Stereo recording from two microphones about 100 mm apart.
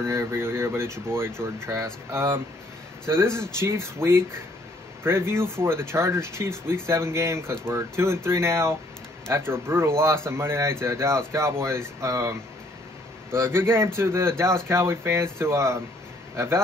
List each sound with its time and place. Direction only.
0.0 s speech: 25° right (ahead or behind)